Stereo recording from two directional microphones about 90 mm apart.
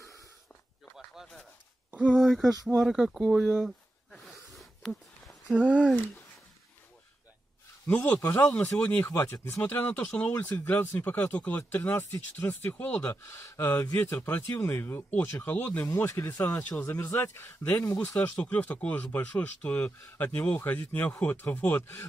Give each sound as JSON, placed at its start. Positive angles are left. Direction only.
{"t": 0.9, "sound": "a sound", "side_deg": -5}
{"t": 2.1, "sound": "speech", "side_deg": 0}
{"t": 2.8, "sound": "a sound", "side_deg": -5}
{"t": 5.5, "sound": "speech", "side_deg": -10}
{"t": 7.8, "sound": "speech", "side_deg": 20}
{"t": 13.1, "sound": "speech", "side_deg": 30}